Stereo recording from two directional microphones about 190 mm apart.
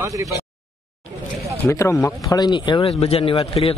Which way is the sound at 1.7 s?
15° left (ahead or behind).